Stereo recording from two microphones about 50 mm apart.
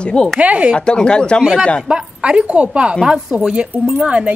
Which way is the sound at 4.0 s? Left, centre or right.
Right.